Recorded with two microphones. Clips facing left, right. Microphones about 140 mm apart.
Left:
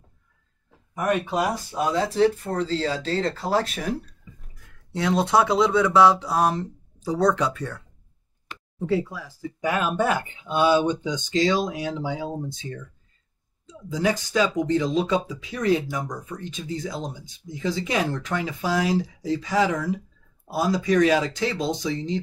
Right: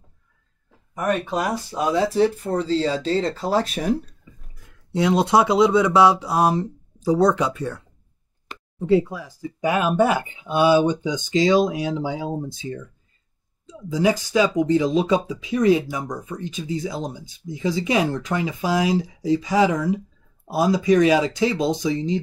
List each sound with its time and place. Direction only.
0.9 s speech: 10° left (ahead or behind)
1.7 s speech: 10° right (ahead or behind)
4.9 s speech: 15° right (ahead or behind)
8.8 s speech: 15° right (ahead or behind)
13.8 s speech: 10° right (ahead or behind)